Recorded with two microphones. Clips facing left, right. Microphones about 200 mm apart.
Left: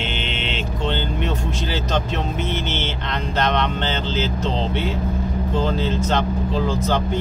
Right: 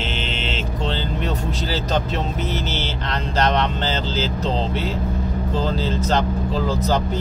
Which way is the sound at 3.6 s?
35° right (ahead or behind).